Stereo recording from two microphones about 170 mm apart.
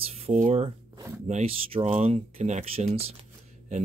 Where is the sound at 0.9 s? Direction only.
15° right (ahead or behind).